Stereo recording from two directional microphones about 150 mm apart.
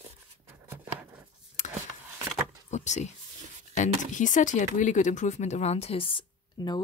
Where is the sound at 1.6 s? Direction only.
55° left (ahead or behind).